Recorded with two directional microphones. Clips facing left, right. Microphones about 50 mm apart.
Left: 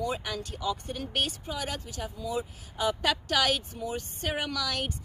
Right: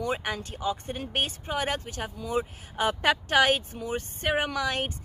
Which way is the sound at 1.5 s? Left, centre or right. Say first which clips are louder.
Right 5 dB; right.